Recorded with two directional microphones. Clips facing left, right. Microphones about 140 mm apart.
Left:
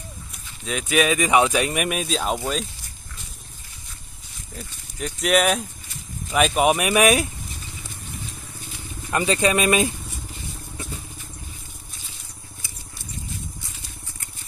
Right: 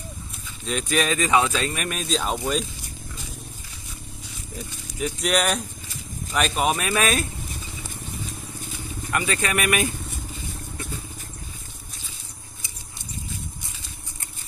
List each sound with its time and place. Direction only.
0.7 s speech: 5° left (ahead or behind)
5.0 s speech: centre (ahead or behind)
9.1 s speech: 25° left (ahead or behind)